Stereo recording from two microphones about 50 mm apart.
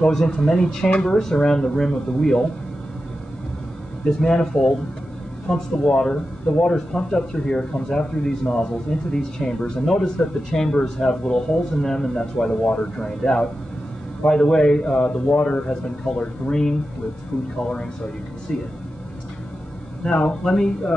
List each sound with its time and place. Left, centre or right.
0.0 s speech: centre
4.2 s speech: centre
18.5 s speech: centre
20.0 s speech: centre